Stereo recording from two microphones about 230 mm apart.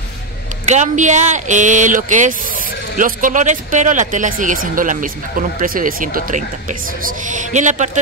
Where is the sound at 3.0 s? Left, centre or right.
Right.